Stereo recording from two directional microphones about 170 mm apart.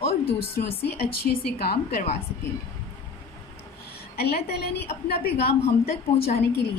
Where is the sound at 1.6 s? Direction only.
65° left (ahead or behind).